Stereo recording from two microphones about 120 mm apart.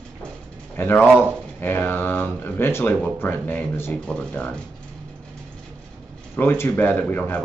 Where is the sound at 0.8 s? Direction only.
15° left (ahead or behind).